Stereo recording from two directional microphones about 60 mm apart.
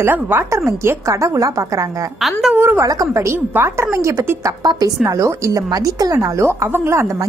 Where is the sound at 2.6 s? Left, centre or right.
Right.